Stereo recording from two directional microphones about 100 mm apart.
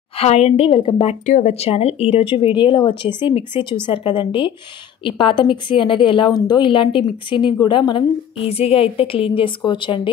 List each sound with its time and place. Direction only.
0.2 s a woman's voice: 90° left
2.5 s a woman's voice: 55° left (ahead or behind)
6.7 s a woman's voice: 55° left (ahead or behind)